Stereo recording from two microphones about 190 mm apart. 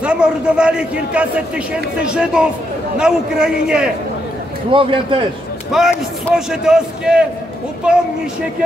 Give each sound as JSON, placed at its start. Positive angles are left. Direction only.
{"t": 0.0, "sound": "a man's voice", "side_deg": -5}
{"t": 4.6, "sound": "a man's voice", "side_deg": -25}
{"t": 5.7, "sound": "a man's voice", "side_deg": -5}